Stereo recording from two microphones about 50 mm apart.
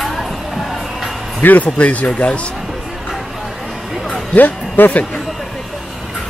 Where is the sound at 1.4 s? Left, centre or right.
Left.